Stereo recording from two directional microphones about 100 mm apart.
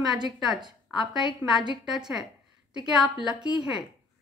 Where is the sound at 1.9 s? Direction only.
5° right (ahead or behind).